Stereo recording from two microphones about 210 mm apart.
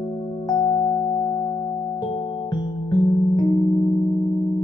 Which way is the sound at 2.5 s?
20° left (ahead or behind).